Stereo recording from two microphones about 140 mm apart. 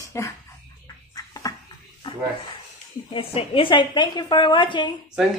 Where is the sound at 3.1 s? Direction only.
40° left (ahead or behind).